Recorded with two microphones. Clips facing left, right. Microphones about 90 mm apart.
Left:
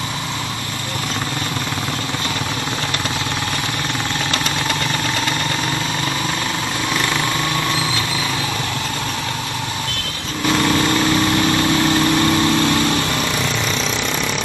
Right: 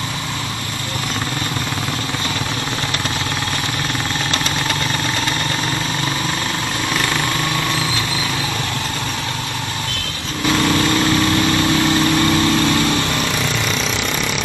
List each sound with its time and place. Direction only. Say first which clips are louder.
10.5 s vehicle: even; 5° left (ahead or behind)